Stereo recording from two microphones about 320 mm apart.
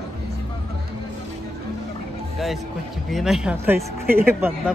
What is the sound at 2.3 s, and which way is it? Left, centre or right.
Speech, centre.